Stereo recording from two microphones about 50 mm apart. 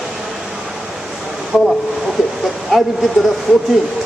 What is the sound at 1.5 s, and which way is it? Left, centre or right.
Speech, centre.